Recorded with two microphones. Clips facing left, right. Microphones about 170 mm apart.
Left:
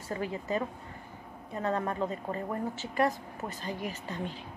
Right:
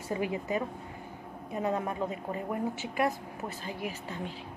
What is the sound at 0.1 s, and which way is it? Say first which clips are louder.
A woman's voice: right 1 dB; 15° right (ahead or behind).